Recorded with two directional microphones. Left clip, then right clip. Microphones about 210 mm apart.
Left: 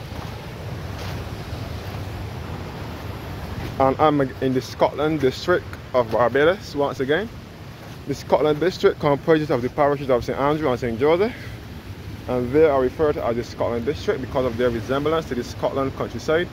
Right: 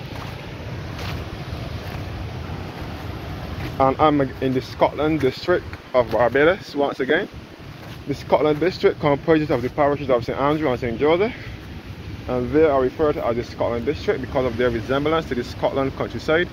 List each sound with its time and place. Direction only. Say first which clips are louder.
3.7 s speech: right 1 dB; 25° left (ahead or behind)
8.1 s speech: right 1 dB; 25° left (ahead or behind); by 16.4 s centre (ahead or behind)